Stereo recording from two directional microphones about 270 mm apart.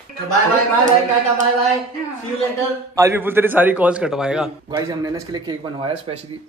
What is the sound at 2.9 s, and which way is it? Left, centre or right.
A man's voice, centre.